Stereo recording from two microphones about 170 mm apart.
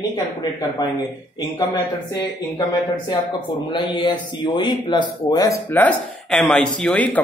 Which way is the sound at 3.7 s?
25° left (ahead or behind).